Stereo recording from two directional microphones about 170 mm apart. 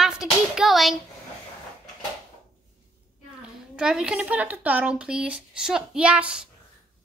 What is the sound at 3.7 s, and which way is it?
Speech, 5° right (ahead or behind).